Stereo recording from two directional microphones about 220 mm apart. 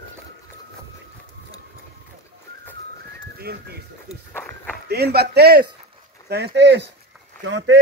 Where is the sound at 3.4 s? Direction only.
45° right (ahead or behind).